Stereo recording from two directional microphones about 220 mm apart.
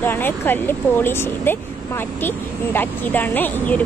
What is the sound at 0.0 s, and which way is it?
Speech, 10° left (ahead or behind).